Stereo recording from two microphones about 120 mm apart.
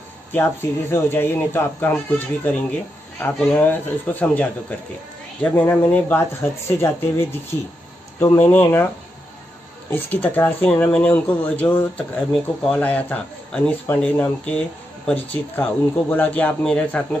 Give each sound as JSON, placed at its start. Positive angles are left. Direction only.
{"t": 0.3, "sound": "speech", "side_deg": 20}
{"t": 3.5, "sound": "speech", "side_deg": 15}
{"t": 9.8, "sound": "speech", "side_deg": 15}
{"t": 12.3, "sound": "speech", "side_deg": 0}
{"t": 12.8, "sound": "speech", "side_deg": 10}